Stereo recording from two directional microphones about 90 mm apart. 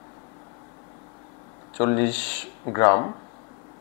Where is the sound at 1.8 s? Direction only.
20° left (ahead or behind).